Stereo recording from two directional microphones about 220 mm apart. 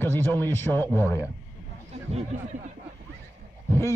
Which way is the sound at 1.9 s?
25° right (ahead or behind).